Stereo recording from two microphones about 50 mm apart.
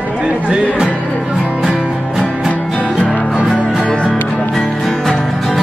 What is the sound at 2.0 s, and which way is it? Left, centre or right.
Music, centre.